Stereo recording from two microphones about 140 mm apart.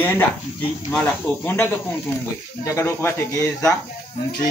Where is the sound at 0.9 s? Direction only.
10° left (ahead or behind).